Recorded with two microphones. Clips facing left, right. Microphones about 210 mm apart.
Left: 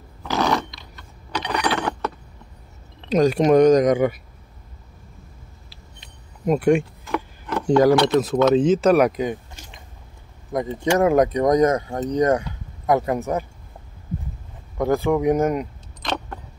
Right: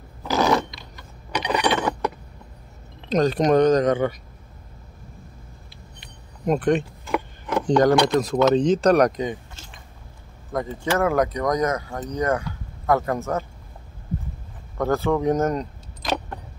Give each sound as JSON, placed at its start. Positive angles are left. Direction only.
{"t": 0.2, "sound": "a sound", "side_deg": -5}
{"t": 1.3, "sound": "a sound", "side_deg": -15}
{"t": 1.8, "sound": "chink", "side_deg": -5}
{"t": 3.1, "sound": "speech", "side_deg": 10}
{"t": 6.4, "sound": "speech", "side_deg": 5}
{"t": 14.8, "sound": "speech", "side_deg": 15}
{"t": 16.0, "sound": "keys jangling", "side_deg": -10}